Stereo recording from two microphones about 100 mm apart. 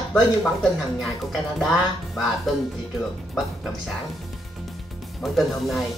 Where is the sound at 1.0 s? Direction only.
Centre (ahead or behind).